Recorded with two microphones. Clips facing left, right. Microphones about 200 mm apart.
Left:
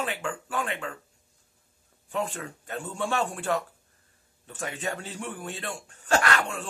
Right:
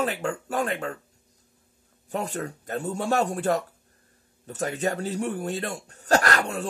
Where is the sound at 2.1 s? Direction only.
40° right (ahead or behind).